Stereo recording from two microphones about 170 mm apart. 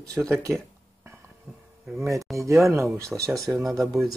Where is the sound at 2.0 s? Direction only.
20° right (ahead or behind).